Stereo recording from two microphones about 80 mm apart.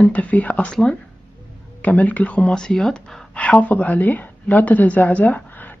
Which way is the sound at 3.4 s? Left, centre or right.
Centre.